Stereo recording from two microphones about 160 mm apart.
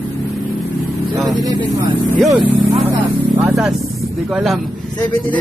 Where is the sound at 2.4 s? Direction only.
30° right (ahead or behind).